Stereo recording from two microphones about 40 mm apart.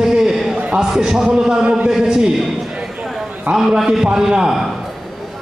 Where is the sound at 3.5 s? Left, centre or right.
Centre.